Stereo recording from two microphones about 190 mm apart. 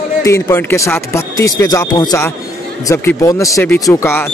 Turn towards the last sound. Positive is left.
turn(degrees=15)  # may be behind; listen again after turning